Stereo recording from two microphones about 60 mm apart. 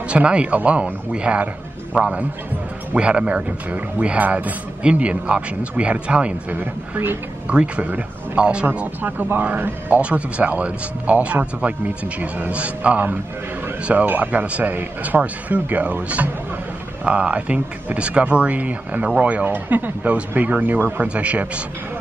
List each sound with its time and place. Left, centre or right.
0.1 s speech: centre
6.5 s speech: right
7.4 s speech: centre
9.0 s speech: right
21.1 s speech: right